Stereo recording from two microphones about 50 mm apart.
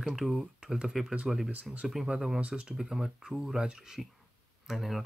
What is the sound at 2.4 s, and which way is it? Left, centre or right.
Speech, right.